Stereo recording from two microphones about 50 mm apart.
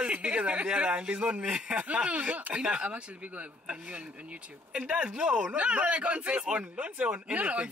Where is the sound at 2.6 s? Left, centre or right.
Centre.